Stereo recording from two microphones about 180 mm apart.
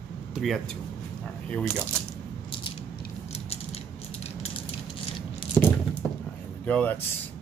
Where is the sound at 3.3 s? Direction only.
35° left (ahead or behind).